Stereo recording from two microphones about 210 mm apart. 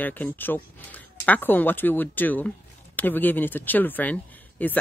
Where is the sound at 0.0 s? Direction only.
10° left (ahead or behind).